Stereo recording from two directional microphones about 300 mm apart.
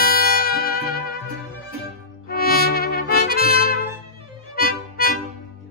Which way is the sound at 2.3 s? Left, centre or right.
Left.